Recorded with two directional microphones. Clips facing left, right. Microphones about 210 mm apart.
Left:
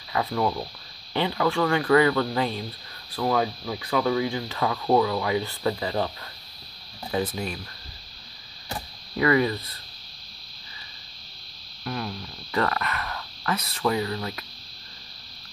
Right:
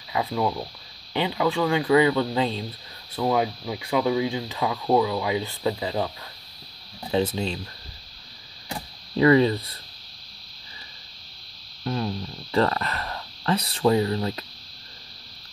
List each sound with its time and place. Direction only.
0.1 s speech: 15° right (ahead or behind)
7.1 s speech: 25° right (ahead or behind)
9.1 s speech: 25° right (ahead or behind)
11.8 s speech: 25° right (ahead or behind)